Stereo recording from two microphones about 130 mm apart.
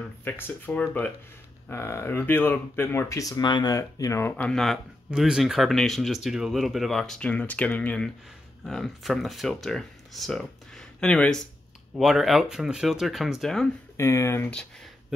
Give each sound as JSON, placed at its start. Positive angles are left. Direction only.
{"t": 0.2, "sound": "speech", "side_deg": 15}
{"t": 13.9, "sound": "speech", "side_deg": 20}